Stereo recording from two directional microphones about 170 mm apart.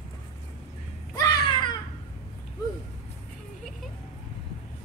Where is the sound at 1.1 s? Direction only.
20° left (ahead or behind).